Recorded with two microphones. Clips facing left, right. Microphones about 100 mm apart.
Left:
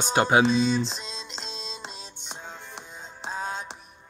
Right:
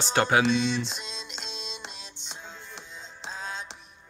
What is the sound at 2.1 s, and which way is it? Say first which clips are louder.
Music: left 3 dB; 50° left (ahead or behind).